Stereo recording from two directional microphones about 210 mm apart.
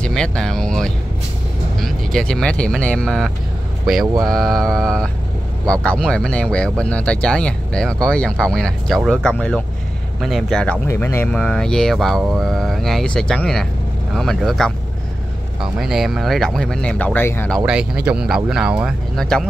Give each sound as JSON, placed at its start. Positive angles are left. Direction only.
{"t": 0.0, "sound": "speech", "side_deg": 5}
{"t": 4.0, "sound": "speech", "side_deg": -20}
{"t": 4.3, "sound": "speech", "side_deg": 0}
{"t": 15.8, "sound": "speech", "side_deg": 0}
{"t": 18.0, "sound": "speech", "side_deg": -5}